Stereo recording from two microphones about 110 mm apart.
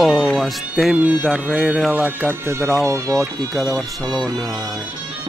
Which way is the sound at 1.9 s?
15° right (ahead or behind).